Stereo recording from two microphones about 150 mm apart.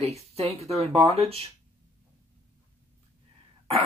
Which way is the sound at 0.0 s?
45° right (ahead or behind).